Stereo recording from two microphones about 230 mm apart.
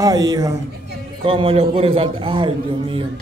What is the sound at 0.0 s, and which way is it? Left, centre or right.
A man's voice, centre.